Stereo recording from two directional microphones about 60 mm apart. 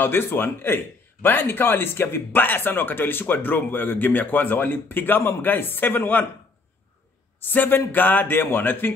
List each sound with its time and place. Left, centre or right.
0.0 s speech: left
7.4 s speech: left